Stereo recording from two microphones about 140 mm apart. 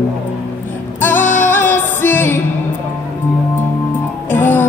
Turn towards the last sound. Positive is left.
turn(degrees=15)  # may be behind; listen again after turning